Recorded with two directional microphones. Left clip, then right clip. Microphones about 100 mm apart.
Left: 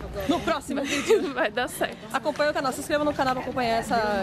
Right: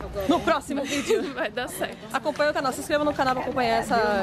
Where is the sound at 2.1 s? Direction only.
20° right (ahead or behind).